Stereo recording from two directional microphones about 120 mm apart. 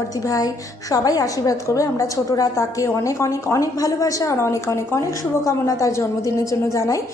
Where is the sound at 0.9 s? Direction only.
30° left (ahead or behind).